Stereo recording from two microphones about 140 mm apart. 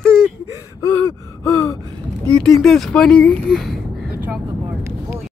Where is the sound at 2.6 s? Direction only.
Centre (ahead or behind).